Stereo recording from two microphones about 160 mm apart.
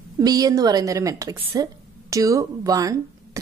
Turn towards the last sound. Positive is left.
turn(degrees=-20)  # may be behind; listen again after turning